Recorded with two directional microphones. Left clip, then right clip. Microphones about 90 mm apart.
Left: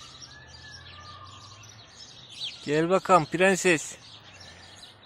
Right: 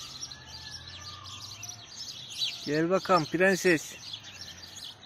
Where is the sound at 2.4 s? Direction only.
90° left; by 3.9 s 55° left (ahead or behind).